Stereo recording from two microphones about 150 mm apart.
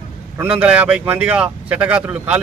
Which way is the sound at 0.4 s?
10° right (ahead or behind).